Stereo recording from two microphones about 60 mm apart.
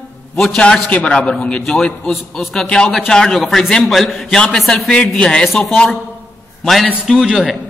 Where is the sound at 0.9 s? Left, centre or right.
Left; by 4.8 s centre.